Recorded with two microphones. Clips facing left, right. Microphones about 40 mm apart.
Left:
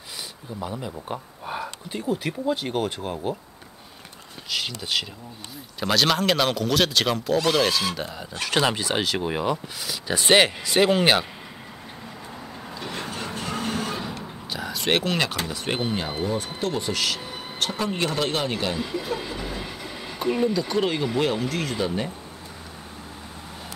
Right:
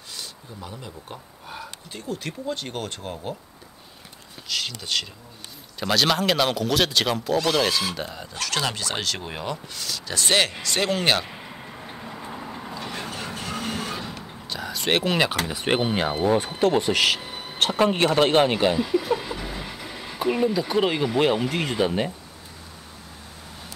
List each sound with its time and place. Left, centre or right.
0.6 s speech: centre
4.5 s speech: centre
8.4 s speech: centre
12.0 s vehicle: centre
14.5 s door: centre
15.4 s speech: right
18.8 s speech: centre
19.3 s train: centre
20.2 s speech: centre